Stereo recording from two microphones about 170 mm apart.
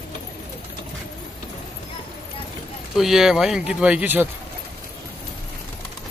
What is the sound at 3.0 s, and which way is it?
Speech, centre (ahead or behind).